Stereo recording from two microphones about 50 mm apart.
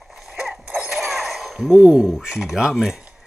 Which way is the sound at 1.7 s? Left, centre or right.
Centre.